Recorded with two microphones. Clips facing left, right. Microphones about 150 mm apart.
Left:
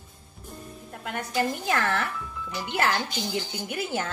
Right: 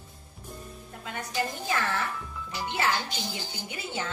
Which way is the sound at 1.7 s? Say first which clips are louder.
Left 3 dB; 60° left (ahead or behind).